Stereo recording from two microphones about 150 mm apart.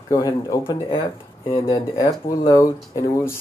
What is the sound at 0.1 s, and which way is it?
Speech, 25° left (ahead or behind).